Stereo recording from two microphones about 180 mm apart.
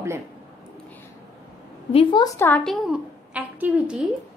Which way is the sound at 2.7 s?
5° right (ahead or behind).